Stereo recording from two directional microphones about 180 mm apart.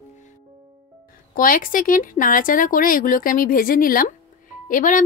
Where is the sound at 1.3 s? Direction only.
50° left (ahead or behind).